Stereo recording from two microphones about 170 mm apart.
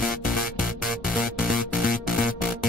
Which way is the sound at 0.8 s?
Centre (ahead or behind).